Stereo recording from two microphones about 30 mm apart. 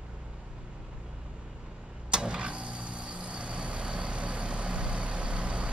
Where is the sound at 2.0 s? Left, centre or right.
Right.